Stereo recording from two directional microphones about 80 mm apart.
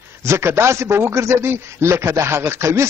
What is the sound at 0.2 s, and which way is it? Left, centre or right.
A man's voice, right.